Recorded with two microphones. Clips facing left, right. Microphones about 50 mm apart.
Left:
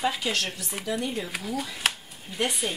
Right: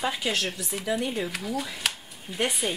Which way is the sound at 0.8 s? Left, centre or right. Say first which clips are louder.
Right 2 dB; right.